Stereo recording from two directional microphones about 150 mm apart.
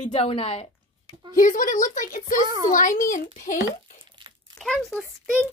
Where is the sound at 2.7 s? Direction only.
60° left (ahead or behind).